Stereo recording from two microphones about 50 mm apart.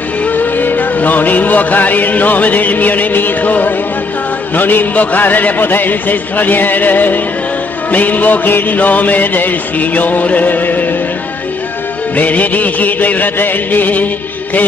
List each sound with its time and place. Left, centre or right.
0.2 s music: left
12.2 s music: left